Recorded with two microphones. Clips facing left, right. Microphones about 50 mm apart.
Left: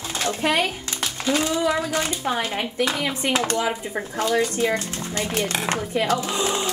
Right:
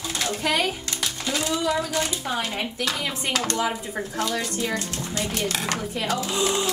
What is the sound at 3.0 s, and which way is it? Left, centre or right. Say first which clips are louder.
Speech: left 4 dB; centre.